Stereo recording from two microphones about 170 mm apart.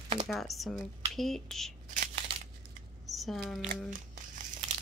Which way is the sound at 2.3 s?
35° right (ahead or behind).